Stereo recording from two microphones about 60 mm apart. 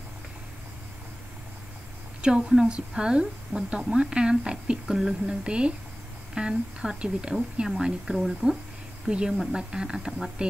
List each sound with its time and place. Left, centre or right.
2.2 s a woman's voice: centre